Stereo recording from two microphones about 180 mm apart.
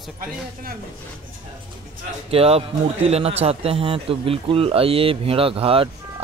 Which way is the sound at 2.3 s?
35° right (ahead or behind).